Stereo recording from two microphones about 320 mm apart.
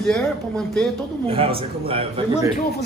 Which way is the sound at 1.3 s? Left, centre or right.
Centre.